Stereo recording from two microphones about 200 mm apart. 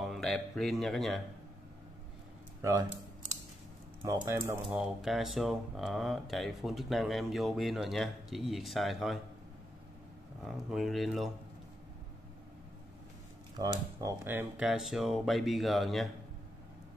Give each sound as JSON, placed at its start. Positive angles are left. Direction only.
{"t": 0.0, "sound": "speech", "side_deg": 0}
{"t": 2.6, "sound": "speech", "side_deg": -15}
{"t": 4.0, "sound": "speech", "side_deg": -15}
{"t": 4.6, "sound": "speech", "side_deg": 0}
{"t": 10.4, "sound": "speech", "side_deg": 0}
{"t": 13.6, "sound": "speech", "side_deg": -15}